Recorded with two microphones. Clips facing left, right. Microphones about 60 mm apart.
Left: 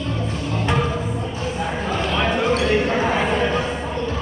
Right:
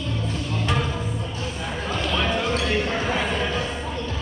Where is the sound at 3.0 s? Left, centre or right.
Centre.